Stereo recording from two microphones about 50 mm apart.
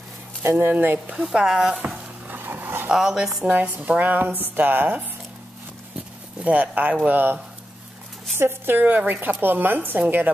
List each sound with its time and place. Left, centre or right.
0.6 s a woman's voice: right
1.0 s a woman's voice: centre
2.2 s a sound: right
2.9 s a woman's voice: centre
3.4 s a woman's voice: right
6.4 s a woman's voice: right
8.4 s a woman's voice: right